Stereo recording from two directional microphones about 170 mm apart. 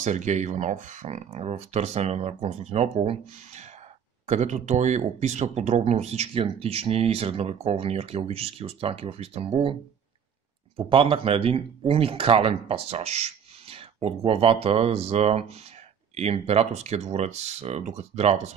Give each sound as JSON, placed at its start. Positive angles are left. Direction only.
{"t": 0.0, "sound": "speech", "side_deg": -45}
{"t": 10.8, "sound": "speech", "side_deg": -30}